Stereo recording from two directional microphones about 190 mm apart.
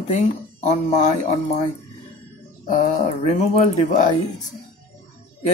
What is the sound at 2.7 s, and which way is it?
Speech, 40° left (ahead or behind).